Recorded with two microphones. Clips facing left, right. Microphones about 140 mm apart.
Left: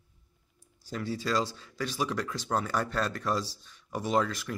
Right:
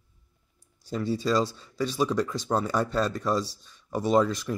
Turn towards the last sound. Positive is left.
turn(degrees=-20)  # may be behind; listen again after turning